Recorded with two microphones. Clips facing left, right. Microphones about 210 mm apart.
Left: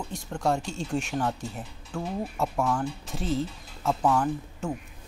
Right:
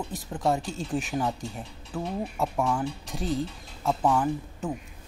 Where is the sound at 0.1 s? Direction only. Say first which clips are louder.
Even; centre (ahead or behind).